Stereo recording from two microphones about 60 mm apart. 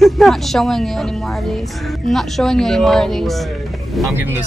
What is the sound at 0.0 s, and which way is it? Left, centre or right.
A woman's voice, centre.